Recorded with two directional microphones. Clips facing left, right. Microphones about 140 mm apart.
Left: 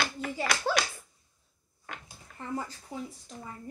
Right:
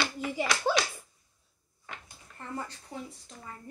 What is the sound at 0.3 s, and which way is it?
Clapping, 15° right (ahead or behind).